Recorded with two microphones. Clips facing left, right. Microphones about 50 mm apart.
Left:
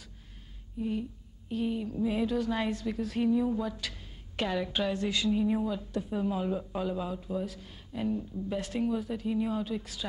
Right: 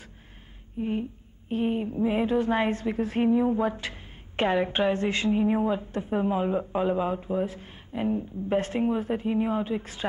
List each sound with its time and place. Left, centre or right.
0.7 s a woman's voice: right